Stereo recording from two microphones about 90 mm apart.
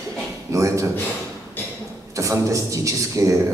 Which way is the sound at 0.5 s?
35° right (ahead or behind).